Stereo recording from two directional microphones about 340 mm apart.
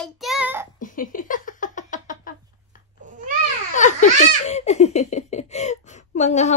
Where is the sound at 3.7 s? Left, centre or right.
Left.